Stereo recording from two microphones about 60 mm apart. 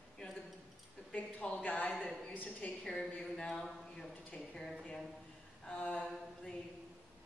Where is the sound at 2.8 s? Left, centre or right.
Centre.